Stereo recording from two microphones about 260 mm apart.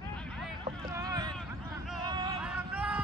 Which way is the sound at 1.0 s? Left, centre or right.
Centre.